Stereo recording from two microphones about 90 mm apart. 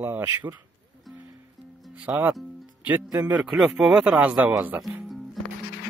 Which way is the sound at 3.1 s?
45° right (ahead or behind).